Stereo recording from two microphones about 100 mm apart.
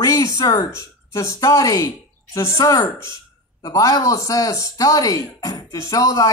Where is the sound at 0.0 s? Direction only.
35° left (ahead or behind).